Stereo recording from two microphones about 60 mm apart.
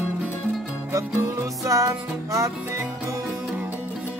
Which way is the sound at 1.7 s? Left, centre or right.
Right.